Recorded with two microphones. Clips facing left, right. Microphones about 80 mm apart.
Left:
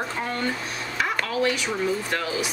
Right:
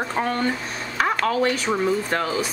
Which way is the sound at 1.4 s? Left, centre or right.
Right.